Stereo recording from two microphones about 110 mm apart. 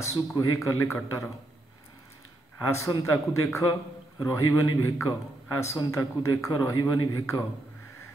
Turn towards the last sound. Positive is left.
turn(degrees=30)  # may be behind; listen again after turning